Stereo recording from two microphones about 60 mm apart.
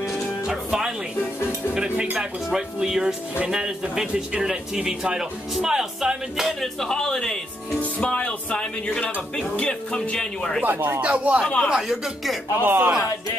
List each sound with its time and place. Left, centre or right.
0.5 s music: centre
2.1 s speech: centre
6.6 s speech: centre
10.6 s speech: right
11.0 s speech: centre
11.4 s speech: centre
11.7 s speech: centre
12.5 s speech: right